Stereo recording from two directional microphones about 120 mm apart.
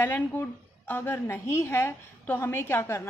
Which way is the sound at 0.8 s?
20° left (ahead or behind).